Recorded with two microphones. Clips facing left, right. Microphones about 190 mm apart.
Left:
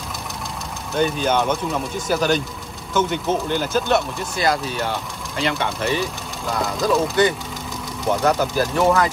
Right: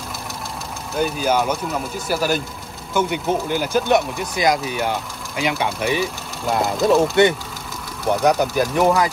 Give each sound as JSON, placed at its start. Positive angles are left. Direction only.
{"t": 0.9, "sound": "speech", "side_deg": -5}
{"t": 6.8, "sound": "speech", "side_deg": -25}